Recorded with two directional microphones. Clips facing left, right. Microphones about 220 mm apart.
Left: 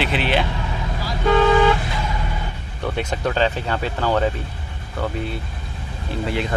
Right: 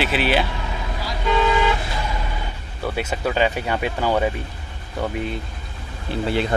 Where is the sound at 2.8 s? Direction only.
5° right (ahead or behind).